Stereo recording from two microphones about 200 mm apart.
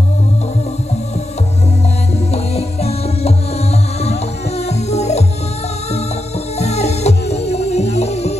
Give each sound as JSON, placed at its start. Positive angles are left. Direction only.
{"t": 2.3, "sound": "music", "side_deg": 30}
{"t": 4.6, "sound": "music", "side_deg": 30}
{"t": 6.6, "sound": "music", "side_deg": 35}